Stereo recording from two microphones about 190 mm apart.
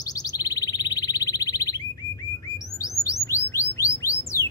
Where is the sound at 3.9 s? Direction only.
15° left (ahead or behind).